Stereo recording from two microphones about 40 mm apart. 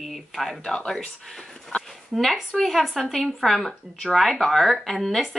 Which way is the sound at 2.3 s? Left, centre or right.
Centre.